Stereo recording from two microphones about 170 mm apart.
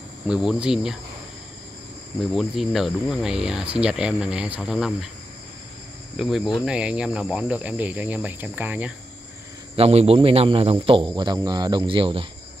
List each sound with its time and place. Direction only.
0.3 s speech: 5° right (ahead or behind)
2.3 s speech: centre (ahead or behind)
6.1 s speech: 5° right (ahead or behind)
9.8 s speech: 35° right (ahead or behind)